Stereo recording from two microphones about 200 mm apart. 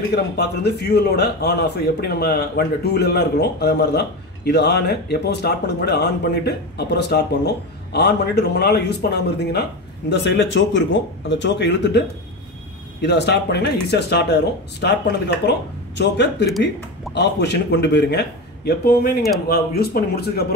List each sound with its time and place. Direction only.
0.1 s a man's voice: 55° left (ahead or behind)
13.0 s a man's voice: 60° left (ahead or behind)